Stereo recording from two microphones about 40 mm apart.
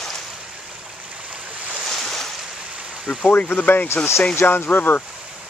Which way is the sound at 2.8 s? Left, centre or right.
Right.